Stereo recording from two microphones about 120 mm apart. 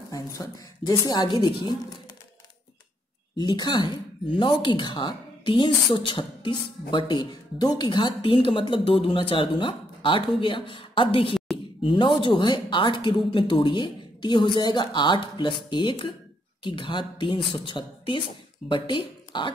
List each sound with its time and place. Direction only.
0.1 s a woman's voice: 30° left (ahead or behind)
3.3 s a woman's voice: 35° left (ahead or behind)